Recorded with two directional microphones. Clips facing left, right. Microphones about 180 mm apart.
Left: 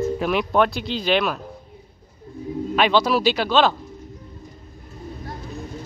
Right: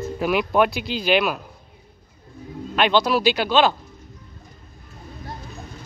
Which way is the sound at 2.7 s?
Centre (ahead or behind).